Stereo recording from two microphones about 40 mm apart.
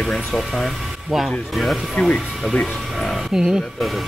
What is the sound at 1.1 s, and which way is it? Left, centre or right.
Speech, centre.